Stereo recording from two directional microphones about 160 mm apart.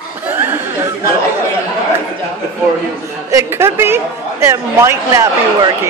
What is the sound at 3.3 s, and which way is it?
A woman's voice, 15° right (ahead or behind).